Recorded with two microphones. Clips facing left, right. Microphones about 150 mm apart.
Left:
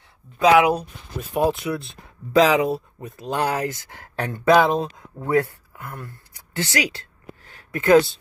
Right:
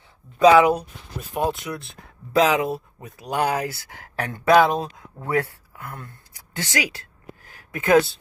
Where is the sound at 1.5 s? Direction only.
Centre (ahead or behind).